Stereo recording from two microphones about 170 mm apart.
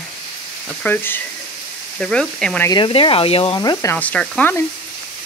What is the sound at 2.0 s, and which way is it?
Speech, 5° left (ahead or behind).